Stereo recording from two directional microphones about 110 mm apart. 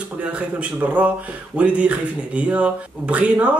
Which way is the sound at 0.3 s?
10° right (ahead or behind).